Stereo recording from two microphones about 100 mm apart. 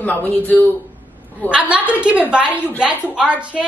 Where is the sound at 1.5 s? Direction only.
15° right (ahead or behind).